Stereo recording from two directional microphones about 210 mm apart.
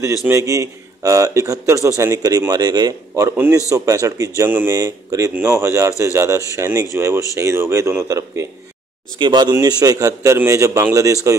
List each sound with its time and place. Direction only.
0.3 s speech: 15° right (ahead or behind)